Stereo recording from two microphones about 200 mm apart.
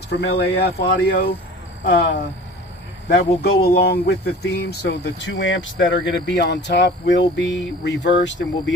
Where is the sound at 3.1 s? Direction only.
50° left (ahead or behind).